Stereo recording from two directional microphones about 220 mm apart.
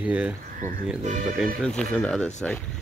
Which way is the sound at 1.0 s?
35° right (ahead or behind).